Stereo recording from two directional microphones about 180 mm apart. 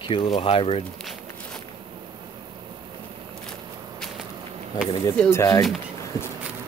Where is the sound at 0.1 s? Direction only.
30° left (ahead or behind).